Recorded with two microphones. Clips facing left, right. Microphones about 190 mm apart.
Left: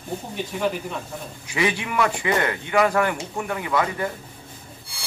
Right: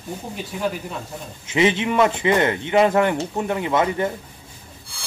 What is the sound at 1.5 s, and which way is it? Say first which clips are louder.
Speech: right 6 dB; 20° right (ahead or behind).